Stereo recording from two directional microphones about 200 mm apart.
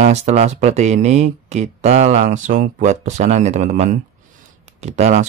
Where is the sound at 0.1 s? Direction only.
35° right (ahead or behind).